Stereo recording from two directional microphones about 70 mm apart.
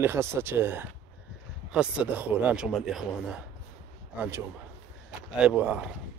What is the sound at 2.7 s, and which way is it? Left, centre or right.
Speech, centre.